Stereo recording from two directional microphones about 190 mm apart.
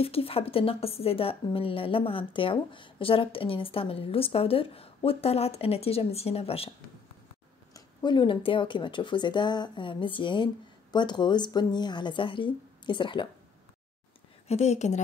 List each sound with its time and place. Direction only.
0.0 s a woman's voice: 30° left (ahead or behind)
7.7 s a woman's voice: 25° left (ahead or behind)
14.5 s speech: 35° left (ahead or behind)